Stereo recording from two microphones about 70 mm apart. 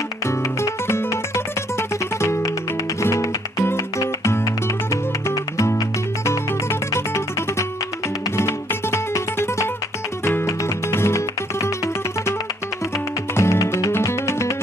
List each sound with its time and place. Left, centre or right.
0.3 s music: left
6.2 s music: left
13.3 s music: left